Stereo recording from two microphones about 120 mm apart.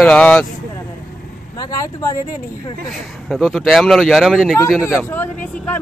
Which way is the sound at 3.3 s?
Centre (ahead or behind).